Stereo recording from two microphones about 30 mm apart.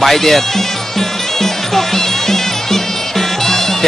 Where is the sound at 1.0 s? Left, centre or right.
Centre.